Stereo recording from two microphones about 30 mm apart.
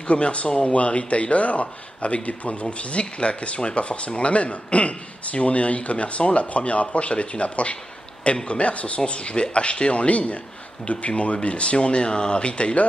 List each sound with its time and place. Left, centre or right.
0.0 s speech: left